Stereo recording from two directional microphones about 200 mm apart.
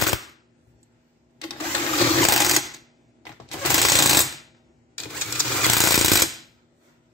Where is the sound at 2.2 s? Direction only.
Centre (ahead or behind).